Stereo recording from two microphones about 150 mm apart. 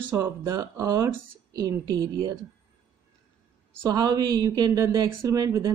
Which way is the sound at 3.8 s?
25° right (ahead or behind).